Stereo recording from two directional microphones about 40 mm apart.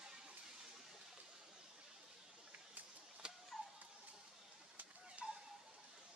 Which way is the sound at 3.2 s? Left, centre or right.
Centre.